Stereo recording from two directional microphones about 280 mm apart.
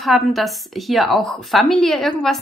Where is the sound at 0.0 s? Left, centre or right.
Centre.